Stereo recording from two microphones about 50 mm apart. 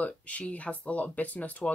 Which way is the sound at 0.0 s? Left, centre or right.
Left.